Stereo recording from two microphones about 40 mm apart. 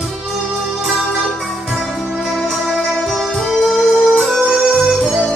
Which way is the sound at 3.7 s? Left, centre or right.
Centre.